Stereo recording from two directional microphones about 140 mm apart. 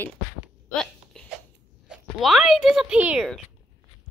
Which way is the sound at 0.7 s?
5° left (ahead or behind).